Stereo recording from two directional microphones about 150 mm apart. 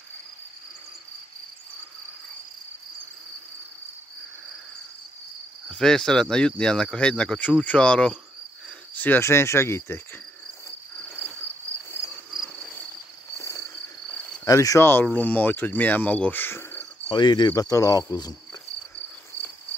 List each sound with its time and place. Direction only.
5.7 s speech: 5° left (ahead or behind)
8.6 s cricket: 10° left (ahead or behind)
11.9 s cricket: 15° left (ahead or behind)
13.4 s cricket: 20° left (ahead or behind)
14.4 s speech: 25° left (ahead or behind)
17.1 s cricket: 30° left (ahead or behind)